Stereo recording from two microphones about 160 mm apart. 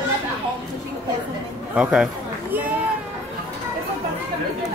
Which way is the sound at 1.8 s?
5° right (ahead or behind).